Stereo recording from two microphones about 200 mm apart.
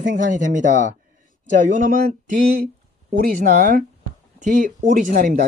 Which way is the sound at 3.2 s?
45° right (ahead or behind).